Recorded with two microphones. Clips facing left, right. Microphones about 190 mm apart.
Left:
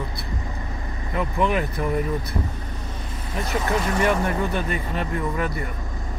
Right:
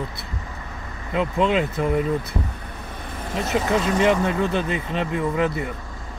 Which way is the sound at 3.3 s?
20° right (ahead or behind).